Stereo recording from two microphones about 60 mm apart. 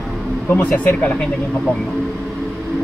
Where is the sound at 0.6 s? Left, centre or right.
Left.